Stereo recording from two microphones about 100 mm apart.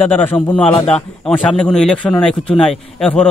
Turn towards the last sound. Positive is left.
turn(degrees=5)  # may be behind; listen again after turning